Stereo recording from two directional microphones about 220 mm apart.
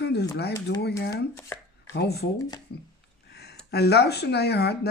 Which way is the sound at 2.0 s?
45° left (ahead or behind).